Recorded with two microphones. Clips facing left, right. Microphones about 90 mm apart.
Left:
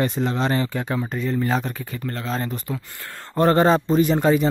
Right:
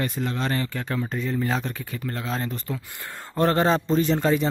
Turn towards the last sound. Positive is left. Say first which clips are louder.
# left 4 dB
turn(degrees=10)  # may be behind; listen again after turning